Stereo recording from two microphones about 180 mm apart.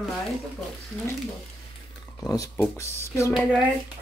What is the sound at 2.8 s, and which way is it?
Speech, 15° left (ahead or behind).